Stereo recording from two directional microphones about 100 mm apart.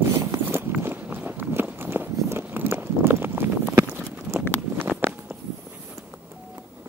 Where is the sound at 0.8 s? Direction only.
20° right (ahead or behind).